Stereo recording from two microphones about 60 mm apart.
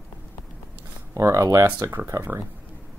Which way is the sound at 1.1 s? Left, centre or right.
Right.